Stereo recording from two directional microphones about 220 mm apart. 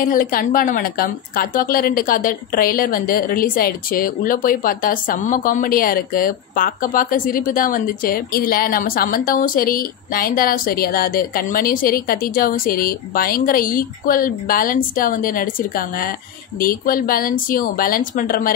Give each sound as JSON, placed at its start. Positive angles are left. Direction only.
{"t": 0.0, "sound": "a woman's voice", "side_deg": 40}